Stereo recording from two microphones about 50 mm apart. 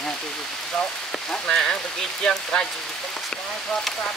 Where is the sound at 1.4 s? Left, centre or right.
Centre.